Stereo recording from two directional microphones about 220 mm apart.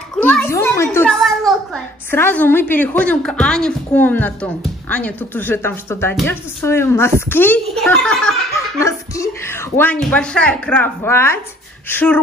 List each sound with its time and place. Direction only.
0.2 s a sound: 5° left (ahead or behind)
2.0 s a woman's voice: 10° left (ahead or behind)
8.8 s a woman's voice: 15° left (ahead or behind)